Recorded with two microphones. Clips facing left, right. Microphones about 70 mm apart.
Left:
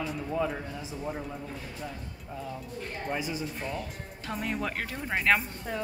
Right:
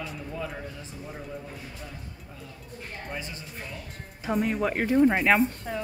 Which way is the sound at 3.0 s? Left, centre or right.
Centre.